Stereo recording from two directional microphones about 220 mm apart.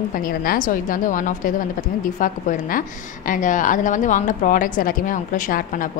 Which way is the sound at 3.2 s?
35° left (ahead or behind).